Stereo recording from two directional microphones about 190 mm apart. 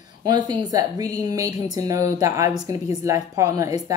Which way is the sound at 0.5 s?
20° right (ahead or behind).